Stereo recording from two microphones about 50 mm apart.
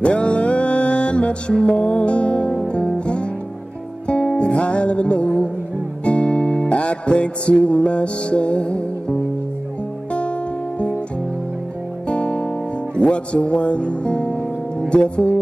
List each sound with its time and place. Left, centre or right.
0.0 s music: left
12.1 s music: left
13.0 s speech: left